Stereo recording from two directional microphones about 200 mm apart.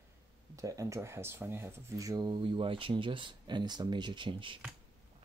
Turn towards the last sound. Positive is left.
turn(degrees=-25)  # may be behind; listen again after turning